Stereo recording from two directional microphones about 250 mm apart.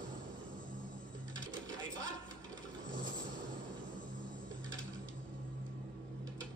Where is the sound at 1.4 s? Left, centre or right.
Right.